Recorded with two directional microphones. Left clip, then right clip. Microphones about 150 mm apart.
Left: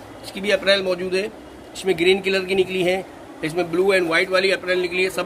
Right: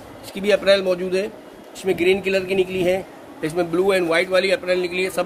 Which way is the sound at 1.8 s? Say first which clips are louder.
Left 1 dB; 30° right (ahead or behind).